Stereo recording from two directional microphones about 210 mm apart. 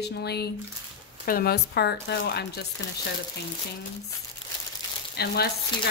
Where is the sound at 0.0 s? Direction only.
50° left (ahead or behind).